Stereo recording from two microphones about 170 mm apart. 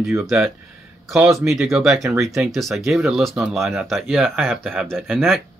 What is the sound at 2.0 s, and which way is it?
Speech, 20° right (ahead or behind).